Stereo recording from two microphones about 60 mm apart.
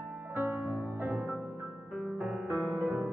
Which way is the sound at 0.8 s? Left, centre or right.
Right.